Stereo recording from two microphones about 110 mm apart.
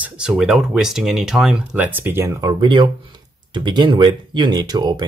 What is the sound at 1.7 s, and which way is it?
Speech, 15° right (ahead or behind).